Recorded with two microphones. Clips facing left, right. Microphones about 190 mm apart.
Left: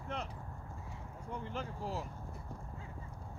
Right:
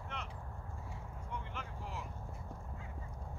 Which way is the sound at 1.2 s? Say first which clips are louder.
Left 6 dB; 35° left (ahead or behind).